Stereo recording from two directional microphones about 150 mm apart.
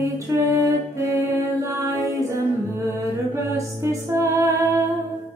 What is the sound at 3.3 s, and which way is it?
Music, 20° right (ahead or behind).